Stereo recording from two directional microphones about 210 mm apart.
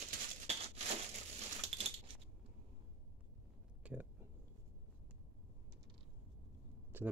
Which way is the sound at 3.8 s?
5° right (ahead or behind).